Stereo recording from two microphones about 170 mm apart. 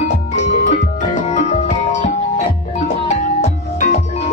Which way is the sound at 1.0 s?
45° left (ahead or behind).